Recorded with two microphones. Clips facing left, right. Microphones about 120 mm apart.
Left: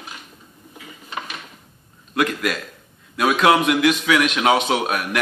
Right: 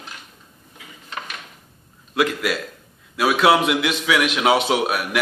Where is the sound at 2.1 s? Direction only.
5° right (ahead or behind).